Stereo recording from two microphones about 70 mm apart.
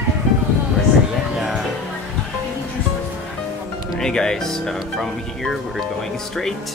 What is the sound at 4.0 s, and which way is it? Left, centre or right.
Speech, centre.